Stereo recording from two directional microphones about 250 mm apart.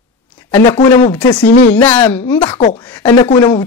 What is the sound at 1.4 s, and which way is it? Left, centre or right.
Speech, left.